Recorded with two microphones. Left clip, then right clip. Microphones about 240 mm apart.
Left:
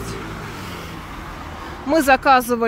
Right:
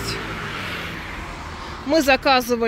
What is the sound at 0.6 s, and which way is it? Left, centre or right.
Vehicle, left.